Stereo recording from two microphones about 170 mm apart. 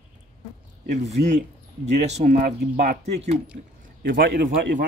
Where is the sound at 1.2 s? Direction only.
75° right (ahead or behind).